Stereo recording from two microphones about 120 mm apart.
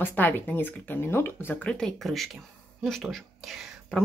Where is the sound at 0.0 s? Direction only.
15° left (ahead or behind); by 4.0 s centre (ahead or behind).